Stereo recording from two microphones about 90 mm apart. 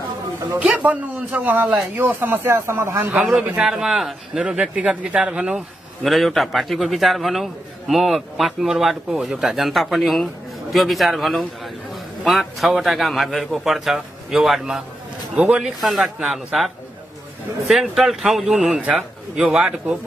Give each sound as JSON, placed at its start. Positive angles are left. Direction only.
{"t": 0.6, "sound": "a man's voice", "side_deg": -15}
{"t": 3.3, "sound": "a man's voice", "side_deg": -10}
{"t": 6.0, "sound": "speech", "side_deg": 0}
{"t": 15.3, "sound": "speech", "side_deg": -15}
{"t": 15.6, "sound": "a man's voice", "side_deg": -5}
{"t": 17.6, "sound": "a man's voice", "side_deg": 0}